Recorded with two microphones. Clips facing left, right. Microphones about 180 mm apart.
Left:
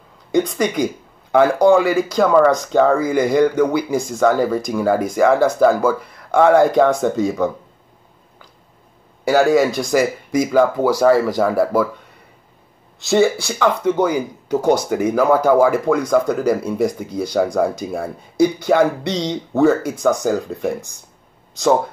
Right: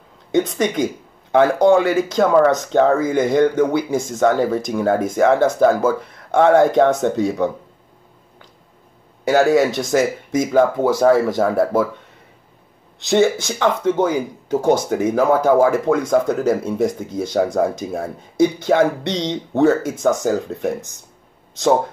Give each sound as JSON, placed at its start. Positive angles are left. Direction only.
{"t": 0.3, "sound": "speech", "side_deg": -25}
{"t": 9.3, "sound": "speech", "side_deg": -20}
{"t": 13.2, "sound": "speech", "side_deg": -20}